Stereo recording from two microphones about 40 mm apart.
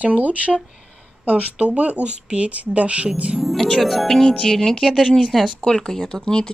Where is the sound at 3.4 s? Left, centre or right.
Centre.